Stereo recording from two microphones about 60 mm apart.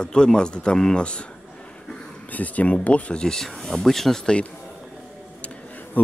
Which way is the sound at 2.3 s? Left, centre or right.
Left.